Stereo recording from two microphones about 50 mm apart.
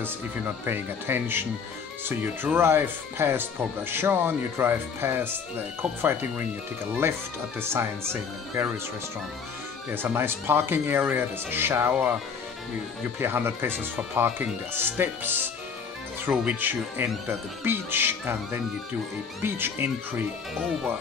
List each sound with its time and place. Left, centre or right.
0.7 s speech: right
10.1 s speech: right
13.2 s speech: right